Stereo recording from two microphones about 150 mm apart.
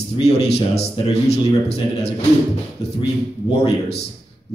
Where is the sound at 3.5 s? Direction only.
45° left (ahead or behind).